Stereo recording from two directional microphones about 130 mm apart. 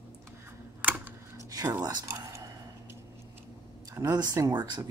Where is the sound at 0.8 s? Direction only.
15° right (ahead or behind).